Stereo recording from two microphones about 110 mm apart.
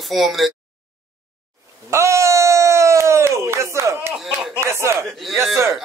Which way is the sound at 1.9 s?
25° right (ahead or behind).